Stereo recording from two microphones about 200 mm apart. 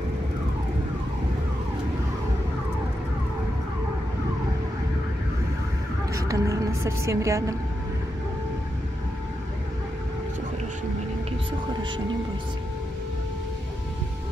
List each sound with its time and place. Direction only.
6.1 s a woman's voice: 15° right (ahead or behind)